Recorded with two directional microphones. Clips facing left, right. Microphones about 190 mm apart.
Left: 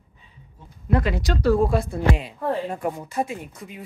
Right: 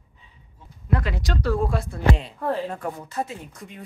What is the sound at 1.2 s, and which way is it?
Speech, 5° left (ahead or behind).